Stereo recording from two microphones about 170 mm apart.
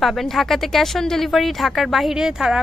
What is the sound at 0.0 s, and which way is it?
Speech, centre (ahead or behind).